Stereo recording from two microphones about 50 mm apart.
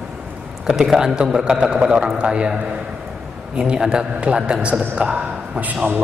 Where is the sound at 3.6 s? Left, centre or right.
Centre.